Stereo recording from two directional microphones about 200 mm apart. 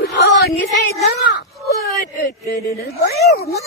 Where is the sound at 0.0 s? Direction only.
55° left (ahead or behind).